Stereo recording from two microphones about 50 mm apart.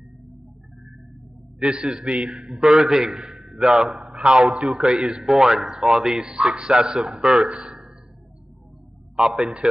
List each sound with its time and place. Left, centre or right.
1.6 s a man's voice: centre
4.0 s a sound: centre
4.7 s a man's voice: centre
9.1 s a man's voice: centre
9.4 s speech: centre